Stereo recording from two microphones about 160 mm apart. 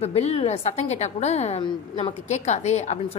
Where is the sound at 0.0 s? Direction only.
40° left (ahead or behind).